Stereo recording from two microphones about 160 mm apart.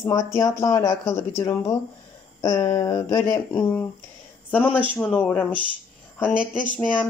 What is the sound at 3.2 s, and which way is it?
Speech, 15° left (ahead or behind).